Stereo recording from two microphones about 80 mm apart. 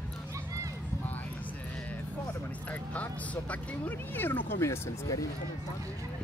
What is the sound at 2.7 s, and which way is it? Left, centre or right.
Speech, centre.